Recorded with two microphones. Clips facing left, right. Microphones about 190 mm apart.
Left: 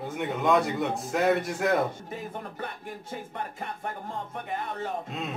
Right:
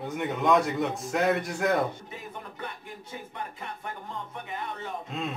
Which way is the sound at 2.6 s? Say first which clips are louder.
Left 3 dB; 50° left (ahead or behind).